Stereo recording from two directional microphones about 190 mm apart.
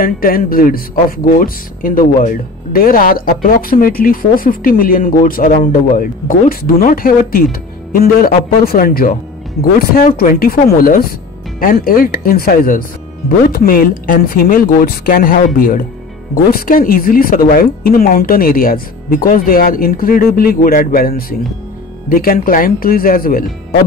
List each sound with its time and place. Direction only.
0.0 s speech: 50° left (ahead or behind)